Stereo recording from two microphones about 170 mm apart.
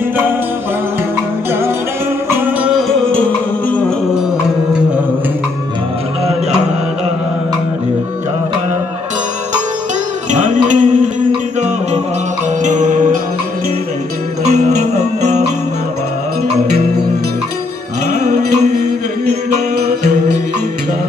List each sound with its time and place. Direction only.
10.3 s music: 50° right (ahead or behind)
12.6 s music: 45° right (ahead or behind)